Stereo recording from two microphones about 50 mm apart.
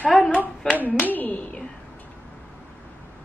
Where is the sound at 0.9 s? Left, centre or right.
Left.